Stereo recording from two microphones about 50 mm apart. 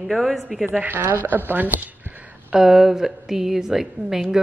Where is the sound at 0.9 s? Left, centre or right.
Right.